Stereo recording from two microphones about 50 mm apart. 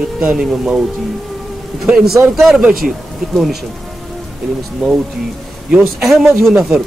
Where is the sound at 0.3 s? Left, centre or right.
Centre.